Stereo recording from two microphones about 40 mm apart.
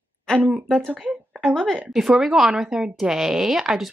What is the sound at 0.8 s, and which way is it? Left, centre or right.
Speech, centre.